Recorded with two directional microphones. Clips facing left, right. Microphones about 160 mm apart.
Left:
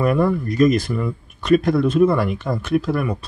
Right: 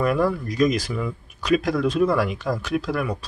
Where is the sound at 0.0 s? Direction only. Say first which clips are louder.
Left 3 dB; centre (ahead or behind).